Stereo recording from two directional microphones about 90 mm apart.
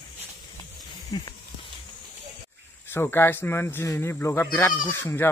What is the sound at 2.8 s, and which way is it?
Speech, 25° left (ahead or behind).